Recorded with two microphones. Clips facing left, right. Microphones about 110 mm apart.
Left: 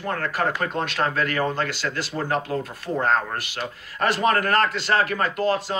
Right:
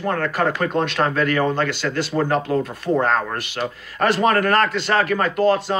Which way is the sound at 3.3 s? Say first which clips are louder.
Right 5 dB; 25° right (ahead or behind).